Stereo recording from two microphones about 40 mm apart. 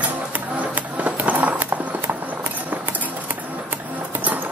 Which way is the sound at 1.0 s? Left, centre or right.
Right.